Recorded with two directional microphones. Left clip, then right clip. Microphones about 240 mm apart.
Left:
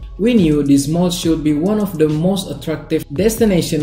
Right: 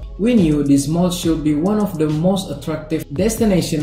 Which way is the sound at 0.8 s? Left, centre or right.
Right.